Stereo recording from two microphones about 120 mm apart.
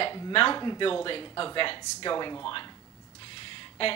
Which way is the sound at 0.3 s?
45° left (ahead or behind).